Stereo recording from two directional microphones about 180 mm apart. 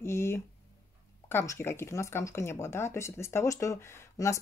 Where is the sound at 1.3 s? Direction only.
15° left (ahead or behind).